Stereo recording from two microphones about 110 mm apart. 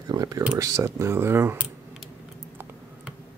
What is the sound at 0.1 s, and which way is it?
Speech, 35° right (ahead or behind).